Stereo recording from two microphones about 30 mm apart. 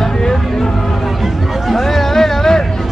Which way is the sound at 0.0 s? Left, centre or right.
Centre.